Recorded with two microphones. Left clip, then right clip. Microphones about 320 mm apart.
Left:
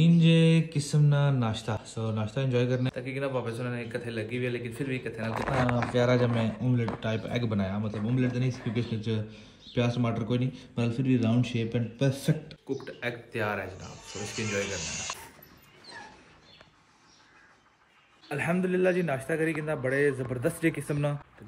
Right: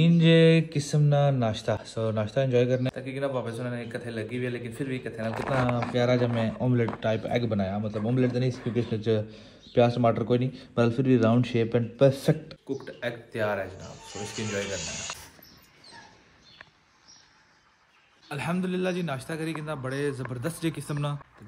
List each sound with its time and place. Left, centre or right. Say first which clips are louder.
0.2 s speech: right 9 dB; centre
11.7 s speech: right 11 dB; centre
12.6 s speech: right 1 dB; centre
18.3 s speech: left 3 dB; centre